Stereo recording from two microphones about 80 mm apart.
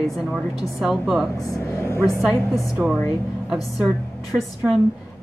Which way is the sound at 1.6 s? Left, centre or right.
Left.